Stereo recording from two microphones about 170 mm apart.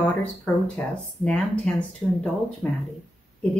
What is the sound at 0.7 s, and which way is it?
A woman's voice, 5° left (ahead or behind).